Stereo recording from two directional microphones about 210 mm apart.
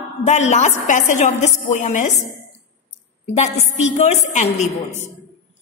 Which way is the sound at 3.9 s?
35° left (ahead or behind).